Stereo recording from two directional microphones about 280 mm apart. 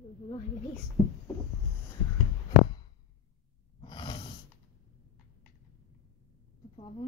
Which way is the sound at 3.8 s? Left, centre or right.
Centre.